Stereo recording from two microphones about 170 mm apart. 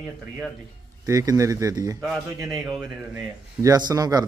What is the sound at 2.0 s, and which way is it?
Speech, centre (ahead or behind).